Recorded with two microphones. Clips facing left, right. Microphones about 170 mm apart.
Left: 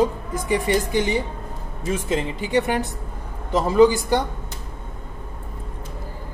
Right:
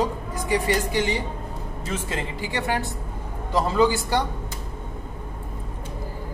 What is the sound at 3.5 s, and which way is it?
Speech, 20° left (ahead or behind).